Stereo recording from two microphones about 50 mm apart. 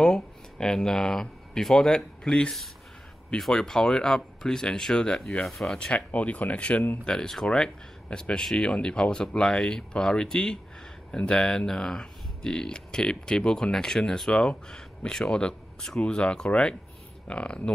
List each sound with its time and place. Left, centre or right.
0.0 s speech: centre
3.6 s speech: centre
5.4 s speech: centre
5.8 s speech: left
7.1 s speech: centre